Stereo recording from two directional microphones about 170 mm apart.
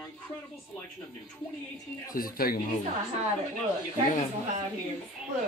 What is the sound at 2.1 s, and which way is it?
Speech, 60° left (ahead or behind).